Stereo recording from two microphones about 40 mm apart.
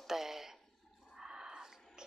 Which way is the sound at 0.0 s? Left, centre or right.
Centre.